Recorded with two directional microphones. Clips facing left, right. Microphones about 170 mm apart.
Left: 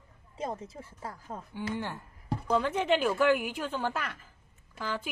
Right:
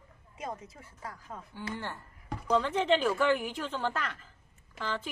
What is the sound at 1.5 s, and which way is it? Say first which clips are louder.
A woman's voice: left 4 dB; 15° left (ahead or behind).